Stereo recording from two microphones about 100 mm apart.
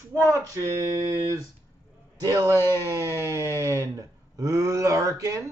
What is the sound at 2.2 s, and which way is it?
Speech, 35° right (ahead or behind).